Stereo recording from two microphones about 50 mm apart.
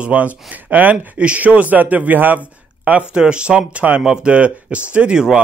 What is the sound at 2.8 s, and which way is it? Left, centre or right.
Speech, right.